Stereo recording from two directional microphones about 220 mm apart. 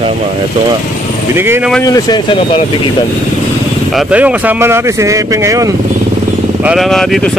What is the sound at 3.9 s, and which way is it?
Speech, 5° right (ahead or behind).